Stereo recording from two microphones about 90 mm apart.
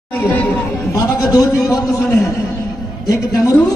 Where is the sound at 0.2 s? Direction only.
20° left (ahead or behind).